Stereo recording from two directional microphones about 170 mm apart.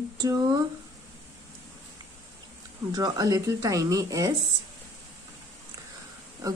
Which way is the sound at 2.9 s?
20° right (ahead or behind).